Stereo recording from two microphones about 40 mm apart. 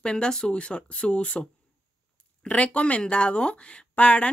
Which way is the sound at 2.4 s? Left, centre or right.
Left.